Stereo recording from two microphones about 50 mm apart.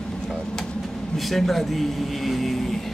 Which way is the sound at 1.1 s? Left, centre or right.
Centre.